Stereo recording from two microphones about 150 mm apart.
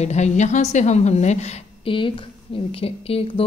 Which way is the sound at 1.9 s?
35° left (ahead or behind).